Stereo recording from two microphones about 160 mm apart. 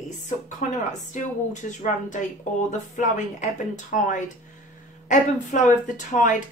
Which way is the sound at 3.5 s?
50° left (ahead or behind).